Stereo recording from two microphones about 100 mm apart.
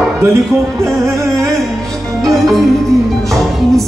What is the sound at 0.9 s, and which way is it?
Music, 30° right (ahead or behind).